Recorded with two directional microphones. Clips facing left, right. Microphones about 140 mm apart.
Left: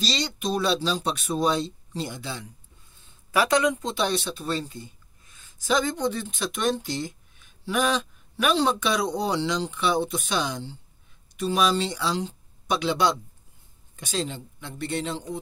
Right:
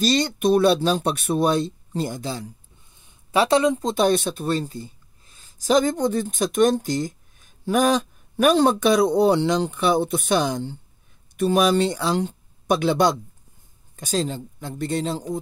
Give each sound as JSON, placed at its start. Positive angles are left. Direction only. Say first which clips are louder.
{"t": 0.0, "sound": "speech", "louder": "right 9 dB", "side_deg": -50}
{"t": 3.0, "sound": "a sound", "louder": "right 4 dB", "side_deg": -25}
{"t": 3.9, "sound": "speech", "louder": "right 7 dB", "side_deg": -50}